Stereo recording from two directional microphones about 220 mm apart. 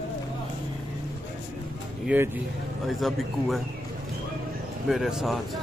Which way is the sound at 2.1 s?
5° right (ahead or behind).